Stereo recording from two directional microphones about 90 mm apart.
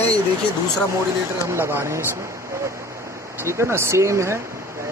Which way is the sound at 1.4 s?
30° right (ahead or behind).